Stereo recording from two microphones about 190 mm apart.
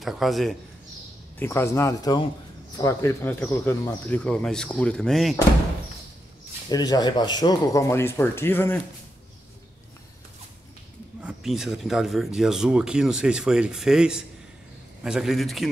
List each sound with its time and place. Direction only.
0.0 s speech: centre (ahead or behind)
1.4 s speech: 15° left (ahead or behind)
6.7 s speech: 20° left (ahead or behind)
11.1 s speech: 5° right (ahead or behind)